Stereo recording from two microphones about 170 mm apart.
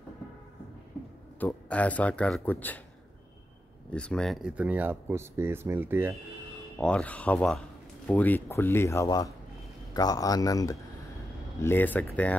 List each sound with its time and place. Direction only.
1.4 s speech: 10° left (ahead or behind)
3.9 s speech: 5° left (ahead or behind); by 6.1 s 10° right (ahead or behind)
6.8 s a man's voice: 5° left (ahead or behind)